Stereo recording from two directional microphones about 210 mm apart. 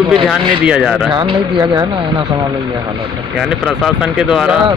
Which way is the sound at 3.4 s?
Centre (ahead or behind).